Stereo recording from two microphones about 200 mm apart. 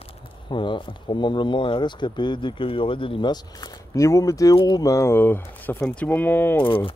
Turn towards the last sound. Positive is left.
turn(degrees=25)  # may be behind; listen again after turning